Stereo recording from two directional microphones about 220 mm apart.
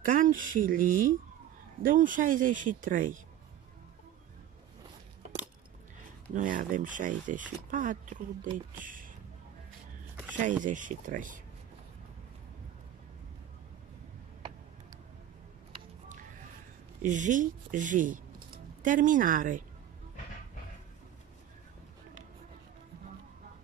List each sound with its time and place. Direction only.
0.0 s speech: 35° right (ahead or behind)
6.3 s speech: 35° right (ahead or behind)
10.3 s speech: 35° right (ahead or behind)
17.0 s speech: 35° right (ahead or behind)